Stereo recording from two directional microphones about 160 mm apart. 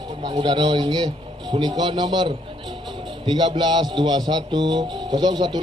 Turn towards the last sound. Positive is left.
turn(degrees=-30)  # may be behind; listen again after turning